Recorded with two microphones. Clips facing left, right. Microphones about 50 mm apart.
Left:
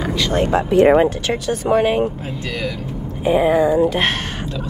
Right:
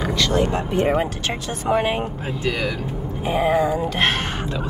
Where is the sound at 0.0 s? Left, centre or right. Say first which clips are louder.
Left 1 dB; centre.